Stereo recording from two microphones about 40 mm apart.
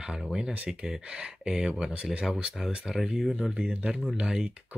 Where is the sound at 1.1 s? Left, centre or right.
Right.